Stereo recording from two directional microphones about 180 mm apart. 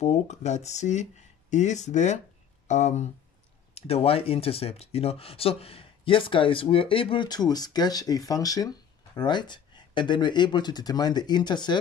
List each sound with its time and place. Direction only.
0.0 s speech: 40° left (ahead or behind); by 11.8 s 25° left (ahead or behind)